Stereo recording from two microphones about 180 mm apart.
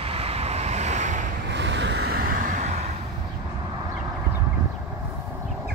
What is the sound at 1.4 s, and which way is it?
Vehicle, 75° right (ahead or behind).